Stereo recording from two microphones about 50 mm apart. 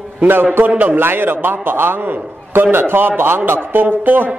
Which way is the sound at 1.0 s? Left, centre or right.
Right.